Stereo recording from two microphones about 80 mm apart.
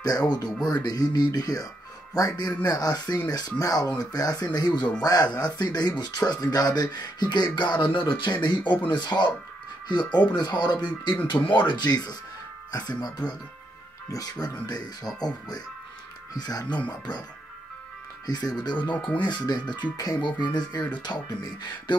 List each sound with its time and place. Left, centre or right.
0.3 s speech: left
8.2 s speech: left
16.6 s speech: centre
18.2 s speech: left
19.1 s speech: left
20.2 s speech: left